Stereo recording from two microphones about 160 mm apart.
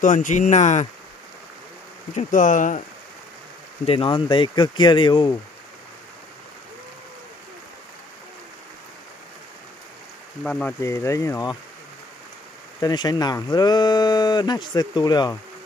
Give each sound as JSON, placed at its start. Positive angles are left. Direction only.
{"t": 0.0, "sound": "speech", "side_deg": 55}
{"t": 2.1, "sound": "speech", "side_deg": 55}
{"t": 3.8, "sound": "speech", "side_deg": 35}
{"t": 10.4, "sound": "speech", "side_deg": 5}
{"t": 10.8, "sound": "speech", "side_deg": 15}
{"t": 12.8, "sound": "speech", "side_deg": 25}